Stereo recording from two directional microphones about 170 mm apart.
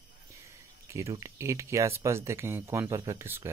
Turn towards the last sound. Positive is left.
turn(degrees=-15)  # may be behind; listen again after turning